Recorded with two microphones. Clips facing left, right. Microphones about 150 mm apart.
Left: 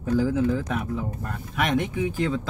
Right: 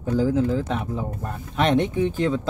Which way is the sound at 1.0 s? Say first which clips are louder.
Right 2 dB; 25° right (ahead or behind).